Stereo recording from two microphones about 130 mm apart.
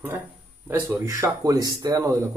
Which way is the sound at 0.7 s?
20° right (ahead or behind).